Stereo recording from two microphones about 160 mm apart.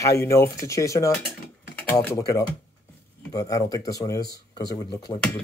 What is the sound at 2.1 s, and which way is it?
Speech, 20° left (ahead or behind).